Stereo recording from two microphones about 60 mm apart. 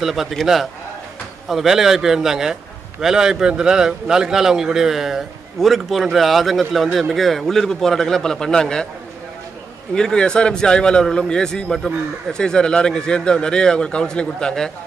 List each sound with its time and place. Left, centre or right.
0.0 s a man's voice: centre
9.9 s a man's voice: centre